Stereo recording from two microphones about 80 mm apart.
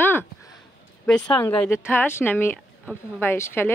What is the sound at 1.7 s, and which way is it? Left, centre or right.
Speech, left.